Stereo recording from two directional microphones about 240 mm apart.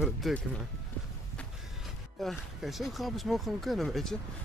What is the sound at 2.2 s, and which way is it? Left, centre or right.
Speech, centre.